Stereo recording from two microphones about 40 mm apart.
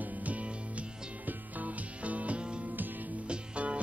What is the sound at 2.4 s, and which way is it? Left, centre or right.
Music, right.